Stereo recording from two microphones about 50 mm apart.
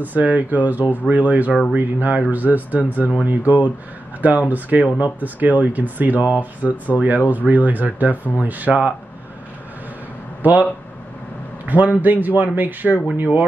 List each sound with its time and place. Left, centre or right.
0.0 s speech: right
10.4 s speech: right